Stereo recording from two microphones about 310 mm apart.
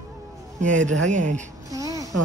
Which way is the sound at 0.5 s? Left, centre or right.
Right.